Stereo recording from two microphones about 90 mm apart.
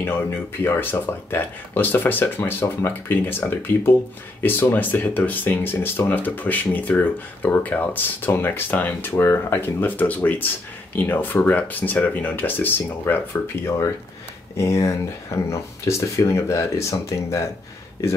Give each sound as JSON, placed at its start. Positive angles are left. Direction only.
{"t": 0.0, "sound": "speech", "side_deg": 25}